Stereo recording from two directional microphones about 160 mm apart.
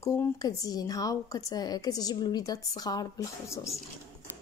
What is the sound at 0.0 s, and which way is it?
A woman's voice, 20° left (ahead or behind).